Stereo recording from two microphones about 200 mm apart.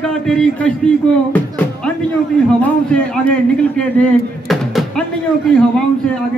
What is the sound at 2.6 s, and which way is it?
Speech, 5° left (ahead or behind).